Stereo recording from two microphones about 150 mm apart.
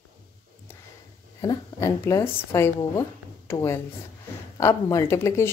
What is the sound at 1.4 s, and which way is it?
Speech, 20° left (ahead or behind).